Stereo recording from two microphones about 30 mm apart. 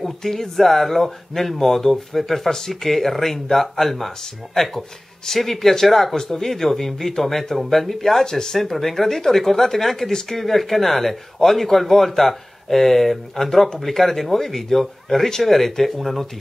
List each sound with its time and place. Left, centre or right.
0.2 s speech: centre